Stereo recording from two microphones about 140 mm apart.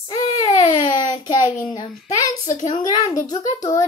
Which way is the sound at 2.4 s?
55° left (ahead or behind).